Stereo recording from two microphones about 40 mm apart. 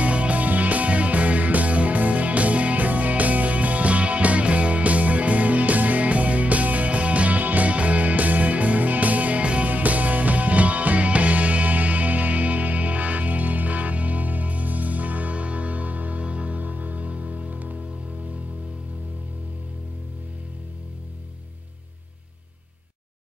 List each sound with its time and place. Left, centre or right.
0.0 s music: right
9.7 s music: right